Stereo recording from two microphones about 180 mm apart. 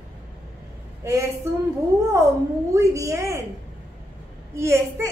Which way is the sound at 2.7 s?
15° right (ahead or behind).